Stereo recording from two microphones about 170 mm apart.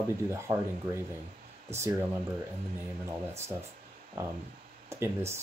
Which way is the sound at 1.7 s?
15° right (ahead or behind).